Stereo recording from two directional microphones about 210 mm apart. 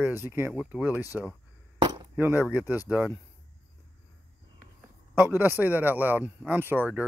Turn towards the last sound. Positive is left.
turn(degrees=-10)  # may be behind; listen again after turning